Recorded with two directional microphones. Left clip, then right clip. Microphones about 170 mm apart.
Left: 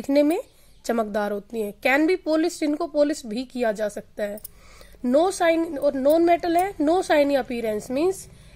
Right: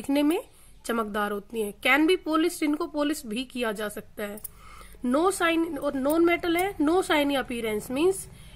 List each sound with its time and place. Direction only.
0.1 s a woman's voice: 25° left (ahead or behind)